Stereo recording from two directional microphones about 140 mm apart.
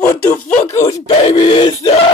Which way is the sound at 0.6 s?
20° left (ahead or behind).